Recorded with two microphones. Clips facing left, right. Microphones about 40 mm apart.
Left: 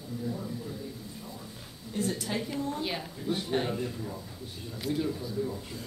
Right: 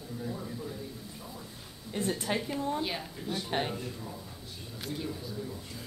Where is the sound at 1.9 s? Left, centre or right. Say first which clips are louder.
Even; right.